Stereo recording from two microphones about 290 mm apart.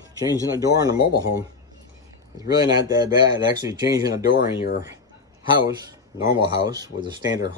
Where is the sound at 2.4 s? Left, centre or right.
Centre.